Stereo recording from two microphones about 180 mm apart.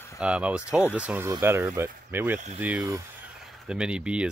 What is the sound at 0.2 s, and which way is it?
Speech, 5° right (ahead or behind).